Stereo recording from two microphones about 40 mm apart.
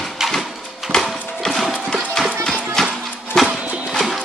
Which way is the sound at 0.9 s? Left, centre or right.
Centre.